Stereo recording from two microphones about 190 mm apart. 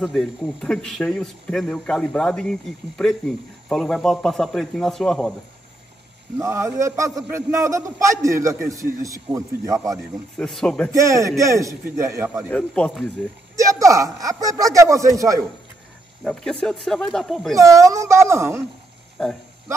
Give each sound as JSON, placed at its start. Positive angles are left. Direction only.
{"t": 0.0, "sound": "a man's voice", "side_deg": 0}
{"t": 6.3, "sound": "a man's voice", "side_deg": -15}
{"t": 10.3, "sound": "a man's voice", "side_deg": 5}
{"t": 10.9, "sound": "a man's voice", "side_deg": -15}
{"t": 12.4, "sound": "a man's voice", "side_deg": 5}
{"t": 13.6, "sound": "a man's voice", "side_deg": -15}
{"t": 16.6, "sound": "a man's voice", "side_deg": 0}
{"t": 17.6, "sound": "a man's voice", "side_deg": -15}